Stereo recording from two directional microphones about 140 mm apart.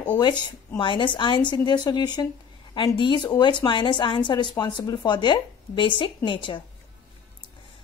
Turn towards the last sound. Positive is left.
turn(degrees=35)  # may be behind; listen again after turning